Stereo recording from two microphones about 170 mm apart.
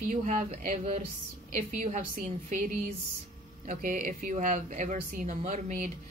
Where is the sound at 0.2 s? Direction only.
40° right (ahead or behind).